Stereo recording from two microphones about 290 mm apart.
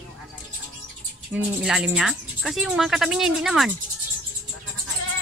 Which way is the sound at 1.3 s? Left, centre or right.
Centre.